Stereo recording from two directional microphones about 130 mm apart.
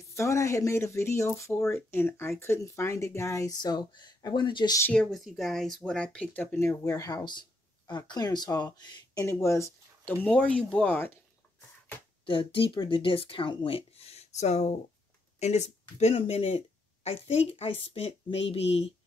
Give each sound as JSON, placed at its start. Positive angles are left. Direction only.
{"t": 0.1, "sound": "speech", "side_deg": 25}
{"t": 5.1, "sound": "speech", "side_deg": 0}
{"t": 9.2, "sound": "speech", "side_deg": 20}
{"t": 10.2, "sound": "speech", "side_deg": 10}
{"t": 12.3, "sound": "speech", "side_deg": 40}